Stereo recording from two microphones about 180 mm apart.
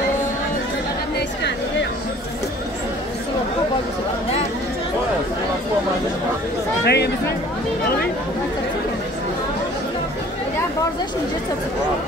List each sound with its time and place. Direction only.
6.8 s speech: 65° left (ahead or behind)